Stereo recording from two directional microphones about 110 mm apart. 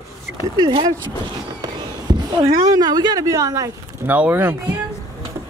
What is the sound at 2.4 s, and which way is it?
Speech, 35° right (ahead or behind).